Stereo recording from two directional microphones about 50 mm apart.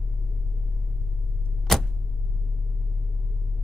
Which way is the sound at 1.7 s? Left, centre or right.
Centre.